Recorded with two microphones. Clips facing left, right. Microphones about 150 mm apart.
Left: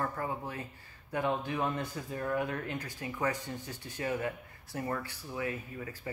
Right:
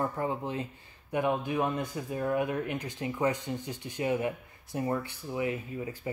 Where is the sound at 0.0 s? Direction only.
20° right (ahead or behind).